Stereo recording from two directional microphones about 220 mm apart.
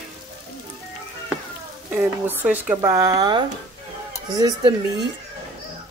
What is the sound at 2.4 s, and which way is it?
Speech, 10° right (ahead or behind).